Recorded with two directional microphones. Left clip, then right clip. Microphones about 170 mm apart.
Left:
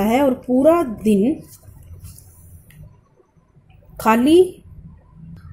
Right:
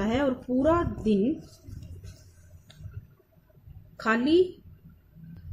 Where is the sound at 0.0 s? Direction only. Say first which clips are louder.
Left 10 dB; 15° left (ahead or behind).